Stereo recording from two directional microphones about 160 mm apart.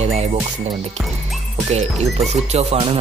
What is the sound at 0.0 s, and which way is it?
Music, 40° right (ahead or behind).